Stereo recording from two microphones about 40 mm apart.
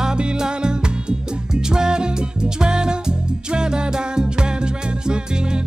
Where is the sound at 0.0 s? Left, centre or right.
Centre.